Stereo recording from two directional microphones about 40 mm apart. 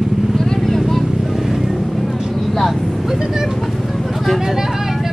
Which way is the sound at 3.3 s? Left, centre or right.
Centre.